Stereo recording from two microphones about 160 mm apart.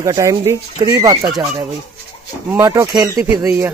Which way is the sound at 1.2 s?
Centre (ahead or behind).